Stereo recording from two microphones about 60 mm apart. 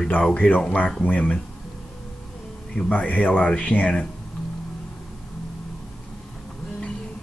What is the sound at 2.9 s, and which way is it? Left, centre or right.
Speech, left.